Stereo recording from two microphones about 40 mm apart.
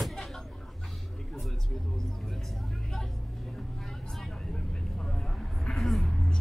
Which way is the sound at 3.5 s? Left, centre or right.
Centre.